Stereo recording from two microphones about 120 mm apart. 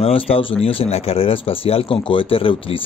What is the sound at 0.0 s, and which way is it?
Speech, 55° left (ahead or behind).